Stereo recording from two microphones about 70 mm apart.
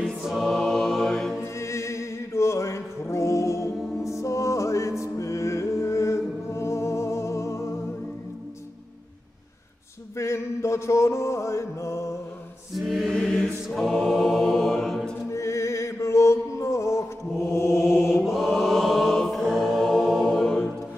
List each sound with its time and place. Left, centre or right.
0.0 s choir: centre
1.4 s music: left
10.1 s mantra: left
12.7 s choir: centre
15.3 s mantra: left
18.2 s chant: centre